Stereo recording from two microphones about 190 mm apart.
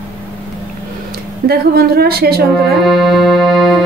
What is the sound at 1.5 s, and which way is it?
Speech, 55° right (ahead or behind).